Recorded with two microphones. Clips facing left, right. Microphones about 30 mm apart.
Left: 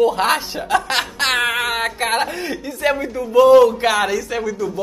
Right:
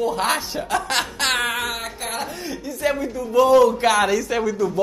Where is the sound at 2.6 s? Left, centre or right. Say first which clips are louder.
Left 2 dB; left.